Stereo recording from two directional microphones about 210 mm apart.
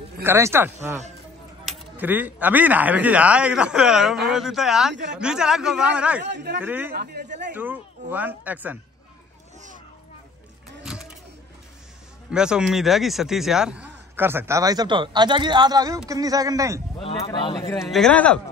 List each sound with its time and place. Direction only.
0.2 s speech: 10° right (ahead or behind)
6.2 s a woman's voice: 55° right (ahead or behind)
6.6 s speech: 10° right (ahead or behind)
6.9 s speech: 50° right (ahead or behind)
7.5 s speech: 10° right (ahead or behind)
10.8 s a sound: 5° right (ahead or behind)
12.3 s speech: 5° right (ahead or behind)
17.0 s speech: 25° left (ahead or behind)
17.8 s speech: centre (ahead or behind)